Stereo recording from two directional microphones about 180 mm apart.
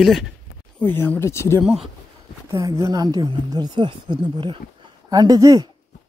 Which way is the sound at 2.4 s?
20° right (ahead or behind).